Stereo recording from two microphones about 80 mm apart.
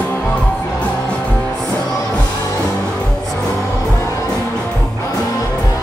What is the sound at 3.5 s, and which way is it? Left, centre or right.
Music, left.